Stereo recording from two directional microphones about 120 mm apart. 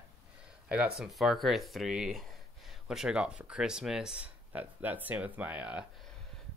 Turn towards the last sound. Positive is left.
turn(degrees=-10)  # may be behind; listen again after turning